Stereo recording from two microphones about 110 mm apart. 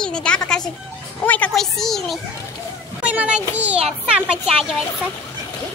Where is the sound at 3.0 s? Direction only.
10° right (ahead or behind).